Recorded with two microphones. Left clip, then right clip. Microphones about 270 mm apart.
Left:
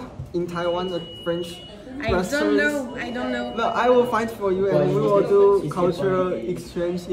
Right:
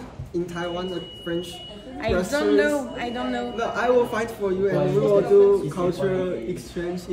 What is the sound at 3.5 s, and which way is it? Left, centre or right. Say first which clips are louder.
A man's voice: left 3 dB; left.